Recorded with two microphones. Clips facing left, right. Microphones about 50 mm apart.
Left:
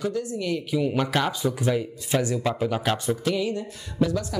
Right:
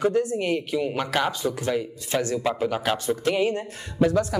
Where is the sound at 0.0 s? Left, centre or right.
Right.